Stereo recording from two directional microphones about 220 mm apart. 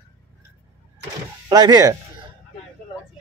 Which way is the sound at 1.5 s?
15° right (ahead or behind).